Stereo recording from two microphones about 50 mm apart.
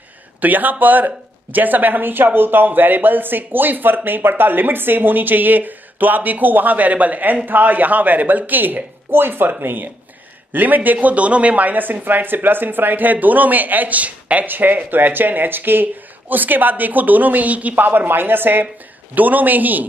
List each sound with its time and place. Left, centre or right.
0.4 s speech: right